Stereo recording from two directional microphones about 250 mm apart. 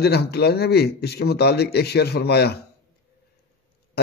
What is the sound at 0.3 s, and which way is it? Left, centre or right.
A man's voice, left.